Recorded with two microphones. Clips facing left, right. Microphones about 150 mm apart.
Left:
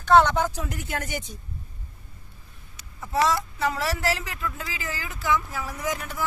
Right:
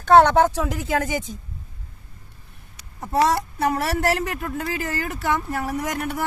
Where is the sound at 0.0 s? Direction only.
55° right (ahead or behind); by 1.0 s 90° right.